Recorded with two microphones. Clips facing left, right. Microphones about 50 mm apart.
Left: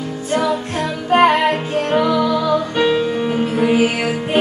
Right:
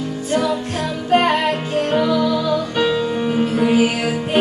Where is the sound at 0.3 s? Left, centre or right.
Centre.